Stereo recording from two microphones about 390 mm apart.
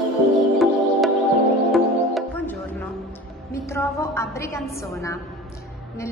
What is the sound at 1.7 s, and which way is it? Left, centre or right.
Music, centre.